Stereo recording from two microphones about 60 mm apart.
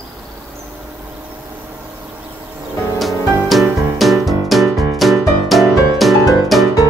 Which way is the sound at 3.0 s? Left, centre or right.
Centre.